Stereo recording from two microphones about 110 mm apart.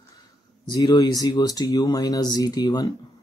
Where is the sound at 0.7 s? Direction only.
35° left (ahead or behind).